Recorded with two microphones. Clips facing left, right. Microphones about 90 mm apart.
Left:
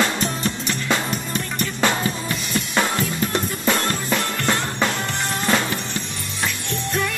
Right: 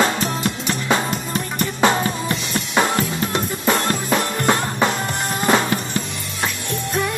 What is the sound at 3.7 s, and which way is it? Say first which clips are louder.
Music: right 3 dB; 20° right (ahead or behind).